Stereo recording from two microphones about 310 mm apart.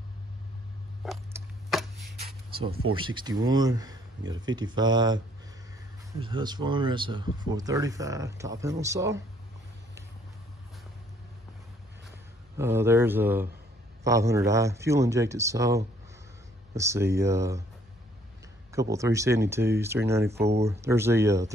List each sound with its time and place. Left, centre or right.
1.0 s a sound: centre
2.1 s a sound: centre
2.9 s speech: centre
6.2 s speech: centre
12.5 s speech: centre
18.7 s speech: centre
20.3 s speech: right
20.6 s speech: centre